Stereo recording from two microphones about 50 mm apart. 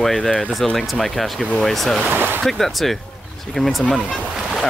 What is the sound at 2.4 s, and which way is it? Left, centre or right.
Speech, centre.